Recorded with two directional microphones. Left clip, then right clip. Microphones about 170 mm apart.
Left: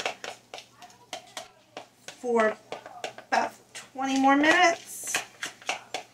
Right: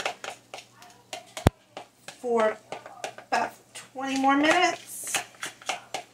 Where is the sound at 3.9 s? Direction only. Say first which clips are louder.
Left 1 dB; 25° left (ahead or behind).